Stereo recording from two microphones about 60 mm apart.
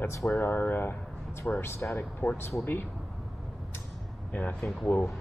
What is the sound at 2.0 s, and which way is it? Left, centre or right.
Speech, left.